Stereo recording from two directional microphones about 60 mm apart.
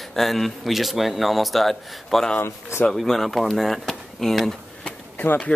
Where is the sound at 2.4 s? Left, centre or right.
Left.